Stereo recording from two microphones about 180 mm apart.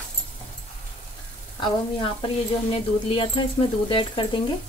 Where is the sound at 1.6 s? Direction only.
25° left (ahead or behind).